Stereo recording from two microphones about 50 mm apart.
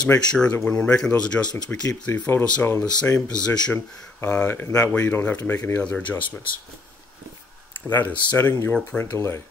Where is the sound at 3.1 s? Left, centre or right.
Left.